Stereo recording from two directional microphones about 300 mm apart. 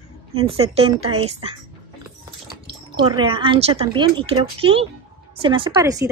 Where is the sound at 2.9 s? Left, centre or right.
Centre.